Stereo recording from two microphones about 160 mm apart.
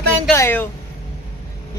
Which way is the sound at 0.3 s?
15° left (ahead or behind).